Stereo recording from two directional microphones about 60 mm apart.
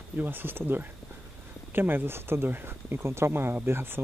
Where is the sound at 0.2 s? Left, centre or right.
Right.